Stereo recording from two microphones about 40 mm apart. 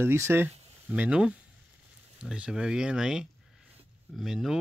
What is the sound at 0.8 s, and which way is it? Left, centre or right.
Speech, right.